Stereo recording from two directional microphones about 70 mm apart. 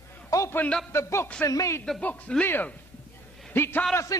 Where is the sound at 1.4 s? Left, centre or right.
Left.